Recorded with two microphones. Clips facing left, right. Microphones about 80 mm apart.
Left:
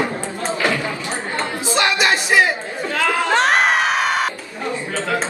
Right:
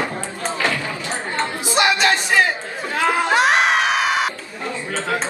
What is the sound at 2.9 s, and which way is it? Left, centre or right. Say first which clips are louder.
Speech: right 1 dB; right.